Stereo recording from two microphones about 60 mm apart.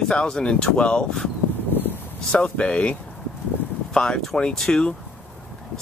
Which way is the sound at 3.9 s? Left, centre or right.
Centre.